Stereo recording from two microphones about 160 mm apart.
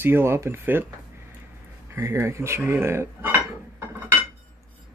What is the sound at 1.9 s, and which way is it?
Speech, 15° right (ahead or behind).